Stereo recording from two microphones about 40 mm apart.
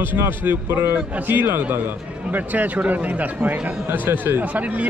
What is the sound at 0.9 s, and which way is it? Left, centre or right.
Speech, right.